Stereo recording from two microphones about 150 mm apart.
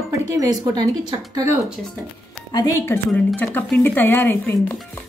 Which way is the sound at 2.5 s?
20° left (ahead or behind).